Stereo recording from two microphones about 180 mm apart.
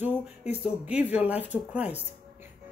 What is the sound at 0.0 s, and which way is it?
Speech, 10° right (ahead or behind).